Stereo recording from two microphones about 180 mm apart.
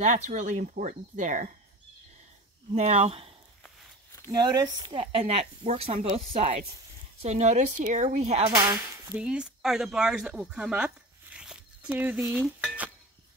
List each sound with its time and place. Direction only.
0.0 s speech: 40° right (ahead or behind)
2.7 s speech: 35° right (ahead or behind)
4.3 s speech: 20° right (ahead or behind)
8.5 s speech: 20° right (ahead or behind)
9.1 s speech: 5° right (ahead or behind)